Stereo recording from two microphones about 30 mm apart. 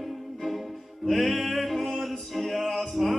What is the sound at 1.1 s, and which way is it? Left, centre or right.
Music, centre.